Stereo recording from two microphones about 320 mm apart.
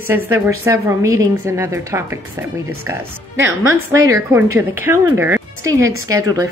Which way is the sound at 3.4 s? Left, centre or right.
Right.